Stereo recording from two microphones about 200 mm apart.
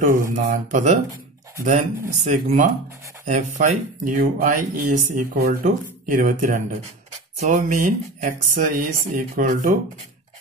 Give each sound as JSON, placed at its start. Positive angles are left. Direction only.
{"t": 0.0, "sound": "speech", "side_deg": -45}